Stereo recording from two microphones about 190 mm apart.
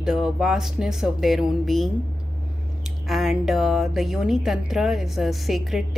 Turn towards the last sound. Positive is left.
turn(degrees=0)  # may be behind; listen again after turning